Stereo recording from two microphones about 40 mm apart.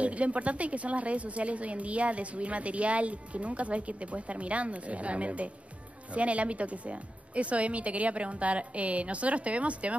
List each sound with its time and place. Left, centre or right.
0.0 s a woman's voice: right